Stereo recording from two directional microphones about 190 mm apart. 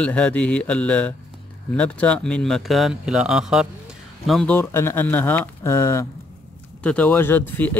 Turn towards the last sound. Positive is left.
turn(degrees=10)  # may be behind; listen again after turning